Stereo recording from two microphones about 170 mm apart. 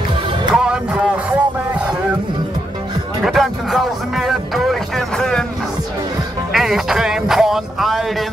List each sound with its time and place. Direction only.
0.6 s a sound: 5° right (ahead or behind)
3.3 s music: centre (ahead or behind)
6.5 s music: centre (ahead or behind)